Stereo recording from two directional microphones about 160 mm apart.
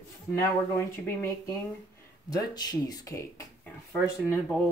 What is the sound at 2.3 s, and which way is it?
Speech, 25° left (ahead or behind).